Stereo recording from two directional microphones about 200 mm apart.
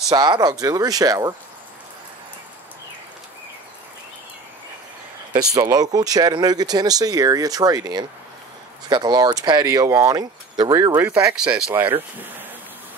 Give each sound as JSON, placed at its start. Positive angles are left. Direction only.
{"t": 0.1, "sound": "speech", "side_deg": -20}
{"t": 5.5, "sound": "speech", "side_deg": -20}